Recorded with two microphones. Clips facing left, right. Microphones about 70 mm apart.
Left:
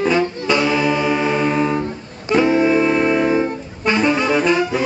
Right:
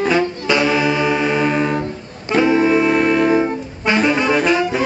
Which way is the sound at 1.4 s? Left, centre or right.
Right.